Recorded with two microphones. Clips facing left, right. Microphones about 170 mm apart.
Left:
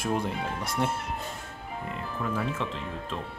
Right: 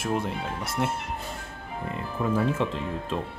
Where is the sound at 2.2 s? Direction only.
20° right (ahead or behind).